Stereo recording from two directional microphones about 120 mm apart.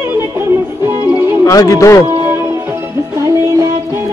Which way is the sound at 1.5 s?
25° left (ahead or behind).